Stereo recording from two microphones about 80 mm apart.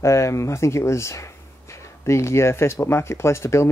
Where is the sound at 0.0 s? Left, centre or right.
Left.